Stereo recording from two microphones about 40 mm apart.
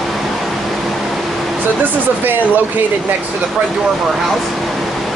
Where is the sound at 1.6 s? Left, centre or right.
Right.